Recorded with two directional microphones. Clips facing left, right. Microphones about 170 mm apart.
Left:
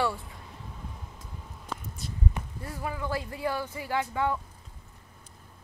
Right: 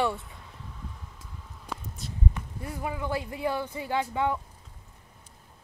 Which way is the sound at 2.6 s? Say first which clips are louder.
Right 2 dB; 15° right (ahead or behind).